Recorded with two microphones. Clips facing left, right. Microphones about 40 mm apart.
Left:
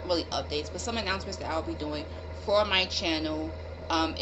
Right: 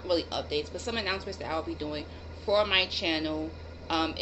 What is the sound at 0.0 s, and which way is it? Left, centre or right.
A woman's voice, centre.